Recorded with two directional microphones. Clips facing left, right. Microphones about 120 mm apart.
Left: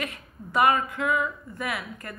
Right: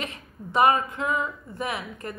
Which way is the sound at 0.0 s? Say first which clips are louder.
Even; 25° right (ahead or behind).